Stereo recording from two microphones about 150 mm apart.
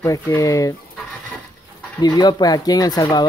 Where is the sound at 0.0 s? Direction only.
20° left (ahead or behind).